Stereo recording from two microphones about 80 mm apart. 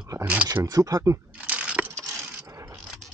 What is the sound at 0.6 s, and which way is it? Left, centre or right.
Speech, right.